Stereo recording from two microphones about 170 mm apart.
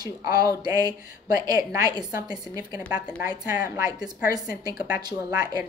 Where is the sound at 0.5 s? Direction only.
20° right (ahead or behind).